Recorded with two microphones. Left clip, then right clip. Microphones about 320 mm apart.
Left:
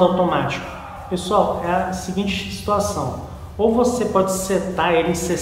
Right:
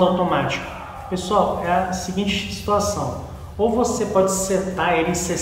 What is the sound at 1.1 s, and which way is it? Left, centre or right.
A man's voice, centre.